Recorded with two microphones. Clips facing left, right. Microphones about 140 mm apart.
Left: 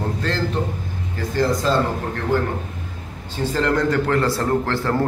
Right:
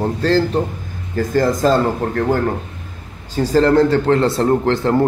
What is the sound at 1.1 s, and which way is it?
Speech, 45° right (ahead or behind).